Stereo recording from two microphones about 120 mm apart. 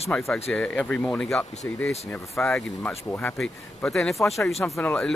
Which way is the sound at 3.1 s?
15° left (ahead or behind).